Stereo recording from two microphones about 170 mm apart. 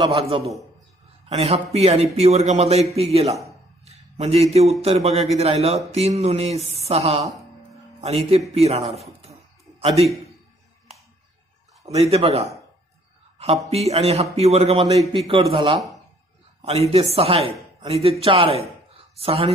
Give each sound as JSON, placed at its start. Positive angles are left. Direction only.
{"t": 0.0, "sound": "a man's voice", "side_deg": -35}
{"t": 9.2, "sound": "music", "side_deg": -35}
{"t": 11.9, "sound": "a man's voice", "side_deg": -35}
{"t": 13.7, "sound": "a man's voice", "side_deg": -40}